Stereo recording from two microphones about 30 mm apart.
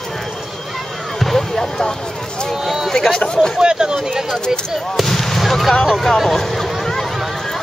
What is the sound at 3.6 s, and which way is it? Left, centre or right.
Speech, right.